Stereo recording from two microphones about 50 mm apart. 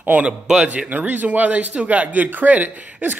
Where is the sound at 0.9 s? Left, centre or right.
Right.